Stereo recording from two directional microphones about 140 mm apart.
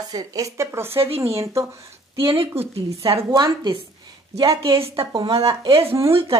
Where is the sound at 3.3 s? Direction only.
35° right (ahead or behind).